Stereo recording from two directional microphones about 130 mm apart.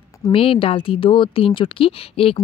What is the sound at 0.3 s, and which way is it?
Speech, 45° left (ahead or behind).